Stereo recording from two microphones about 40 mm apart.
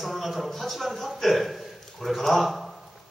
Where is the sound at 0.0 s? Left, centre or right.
Centre.